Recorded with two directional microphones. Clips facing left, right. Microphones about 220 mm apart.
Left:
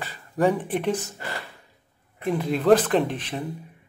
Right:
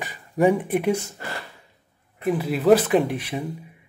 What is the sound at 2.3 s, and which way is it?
Speech, 5° right (ahead or behind).